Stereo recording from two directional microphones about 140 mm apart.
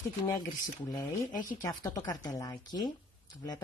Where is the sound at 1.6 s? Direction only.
25° left (ahead or behind).